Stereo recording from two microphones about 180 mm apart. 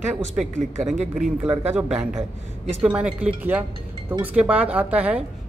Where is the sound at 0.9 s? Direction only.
40° right (ahead or behind).